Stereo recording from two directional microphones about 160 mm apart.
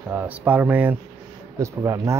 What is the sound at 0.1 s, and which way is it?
Speech, 10° right (ahead or behind).